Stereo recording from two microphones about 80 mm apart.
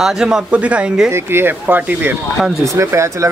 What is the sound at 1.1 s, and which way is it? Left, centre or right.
Speech, right.